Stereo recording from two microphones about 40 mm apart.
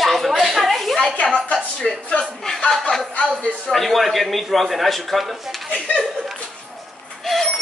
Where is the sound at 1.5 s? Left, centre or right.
Centre.